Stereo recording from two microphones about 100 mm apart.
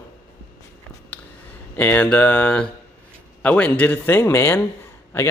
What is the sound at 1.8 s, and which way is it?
Speech, 20° left (ahead or behind).